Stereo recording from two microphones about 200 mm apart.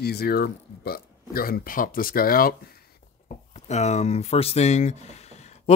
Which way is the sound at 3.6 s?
35° left (ahead or behind).